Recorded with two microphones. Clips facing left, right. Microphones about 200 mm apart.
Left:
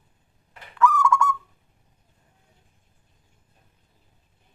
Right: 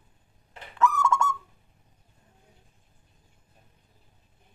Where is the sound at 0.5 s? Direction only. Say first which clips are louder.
Left 3 dB; 25° right (ahead or behind).